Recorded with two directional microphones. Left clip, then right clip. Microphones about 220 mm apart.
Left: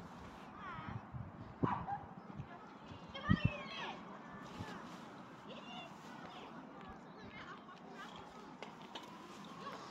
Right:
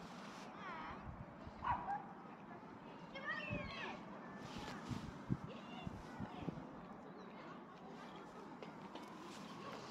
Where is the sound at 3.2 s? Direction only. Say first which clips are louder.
Left 4 dB; 30° left (ahead or behind).